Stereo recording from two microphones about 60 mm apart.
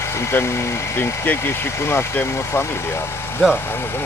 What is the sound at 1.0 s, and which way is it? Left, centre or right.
Speech, left.